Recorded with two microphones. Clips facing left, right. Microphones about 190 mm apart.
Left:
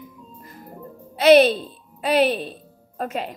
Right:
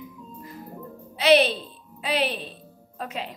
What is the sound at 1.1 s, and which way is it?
A woman's voice, 45° left (ahead or behind).